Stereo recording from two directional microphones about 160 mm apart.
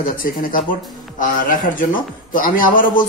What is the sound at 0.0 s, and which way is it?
Speech, 60° left (ahead or behind).